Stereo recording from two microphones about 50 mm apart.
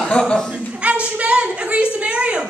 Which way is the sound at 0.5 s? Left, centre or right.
Right.